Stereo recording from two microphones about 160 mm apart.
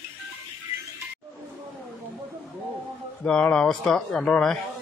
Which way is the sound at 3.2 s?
5° left (ahead or behind).